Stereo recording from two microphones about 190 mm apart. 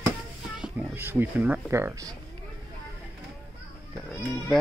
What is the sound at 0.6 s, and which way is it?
Cat, 10° right (ahead or behind).